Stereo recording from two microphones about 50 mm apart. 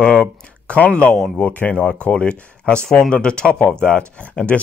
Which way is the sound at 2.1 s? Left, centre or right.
Centre.